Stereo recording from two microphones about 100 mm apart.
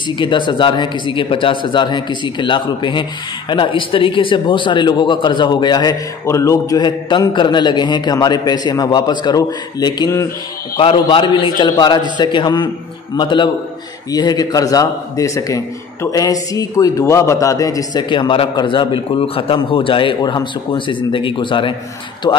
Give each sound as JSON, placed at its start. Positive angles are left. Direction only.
{"t": 0.2, "sound": "a man's voice", "side_deg": 50}
{"t": 6.2, "sound": "a man's voice", "side_deg": 30}
{"t": 7.1, "sound": "a man's voice", "side_deg": 50}
{"t": 10.8, "sound": "a man's voice", "side_deg": 60}
{"t": 18.0, "sound": "a man's voice", "side_deg": 55}